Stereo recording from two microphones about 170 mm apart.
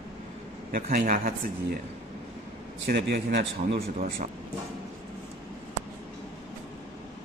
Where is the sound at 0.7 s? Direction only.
60° right (ahead or behind).